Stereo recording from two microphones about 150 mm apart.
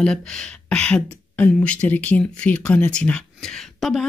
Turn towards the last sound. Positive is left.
turn(degrees=0)  # may be behind; listen again after turning